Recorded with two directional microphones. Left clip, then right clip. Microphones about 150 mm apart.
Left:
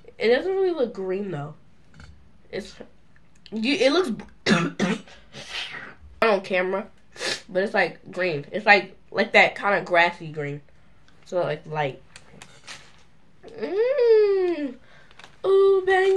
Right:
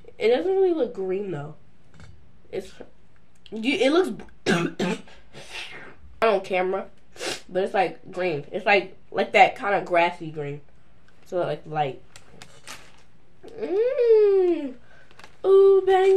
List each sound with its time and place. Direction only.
0.2 s speech: 15° right (ahead or behind)
3.4 s speech: 20° right (ahead or behind)
5.3 s a sound: 5° right (ahead or behind)
6.1 s speech: 20° right (ahead or behind)
13.6 s a sound: 20° right (ahead or behind)
15.4 s speech: 10° right (ahead or behind)